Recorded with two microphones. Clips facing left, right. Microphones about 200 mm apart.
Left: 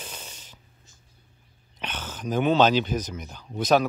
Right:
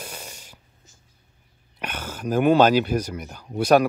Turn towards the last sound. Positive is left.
turn(degrees=-10)  # may be behind; listen again after turning